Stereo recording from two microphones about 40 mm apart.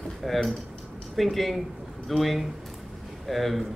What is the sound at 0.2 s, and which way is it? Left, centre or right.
A man's voice, centre.